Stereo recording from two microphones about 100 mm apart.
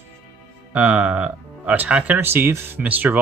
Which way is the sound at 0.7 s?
15° right (ahead or behind).